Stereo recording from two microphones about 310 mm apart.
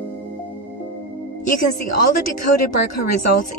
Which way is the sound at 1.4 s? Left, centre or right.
Left.